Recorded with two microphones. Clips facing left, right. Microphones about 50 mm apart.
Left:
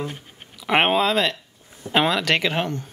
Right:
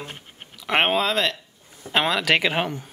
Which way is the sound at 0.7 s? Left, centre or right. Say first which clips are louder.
Left 2 dB; centre.